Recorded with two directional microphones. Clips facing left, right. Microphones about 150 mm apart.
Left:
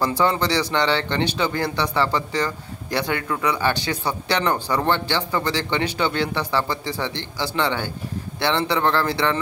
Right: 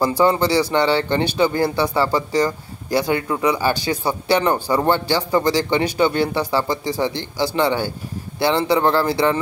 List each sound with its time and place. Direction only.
0.0 s a man's voice: 15° right (ahead or behind)
3.2 s speech: 20° right (ahead or behind)
3.5 s speech: 10° right (ahead or behind)